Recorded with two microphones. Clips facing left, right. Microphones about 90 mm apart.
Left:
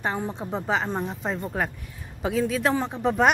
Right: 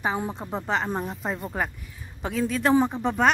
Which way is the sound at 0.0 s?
5° right (ahead or behind).